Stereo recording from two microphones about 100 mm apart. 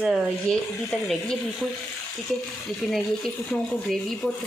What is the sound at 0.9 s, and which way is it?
Speech, centre (ahead or behind).